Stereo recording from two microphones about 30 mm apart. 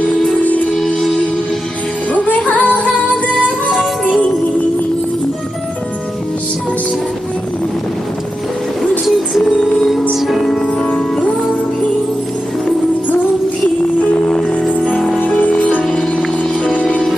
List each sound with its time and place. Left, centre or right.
0.4 s music: left
2.1 s music: left
9.4 s music: left
10.1 s music: centre
15.2 s music: left